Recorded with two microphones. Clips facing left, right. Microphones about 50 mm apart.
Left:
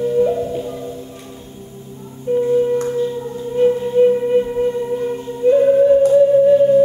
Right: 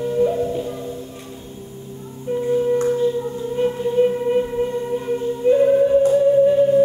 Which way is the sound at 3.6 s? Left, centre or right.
Centre.